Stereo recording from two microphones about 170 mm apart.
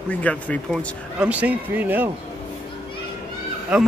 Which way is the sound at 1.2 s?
10° right (ahead or behind).